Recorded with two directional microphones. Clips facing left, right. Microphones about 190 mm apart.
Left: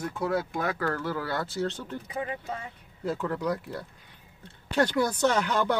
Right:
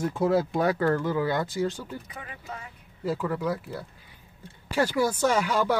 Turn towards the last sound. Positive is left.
turn(degrees=-10)  # may be behind; listen again after turning